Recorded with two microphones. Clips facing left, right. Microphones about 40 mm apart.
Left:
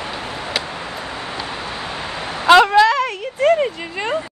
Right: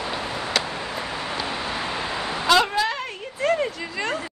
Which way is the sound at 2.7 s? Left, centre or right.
Left.